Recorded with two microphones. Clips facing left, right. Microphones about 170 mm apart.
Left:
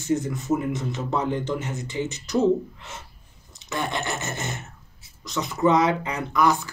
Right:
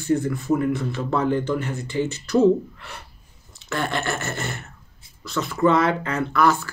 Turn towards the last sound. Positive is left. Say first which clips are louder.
# right 2 dB
turn(degrees=15)  # may be behind; listen again after turning